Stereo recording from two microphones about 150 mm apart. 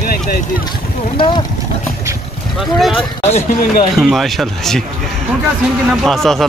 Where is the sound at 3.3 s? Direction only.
50° left (ahead or behind).